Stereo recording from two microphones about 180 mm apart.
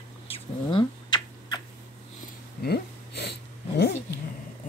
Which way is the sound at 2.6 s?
65° left (ahead or behind).